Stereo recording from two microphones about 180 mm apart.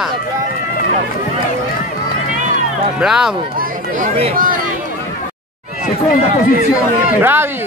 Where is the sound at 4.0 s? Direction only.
35° right (ahead or behind).